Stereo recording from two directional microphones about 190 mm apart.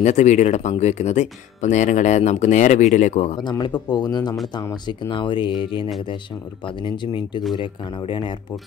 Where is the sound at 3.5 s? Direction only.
20° left (ahead or behind).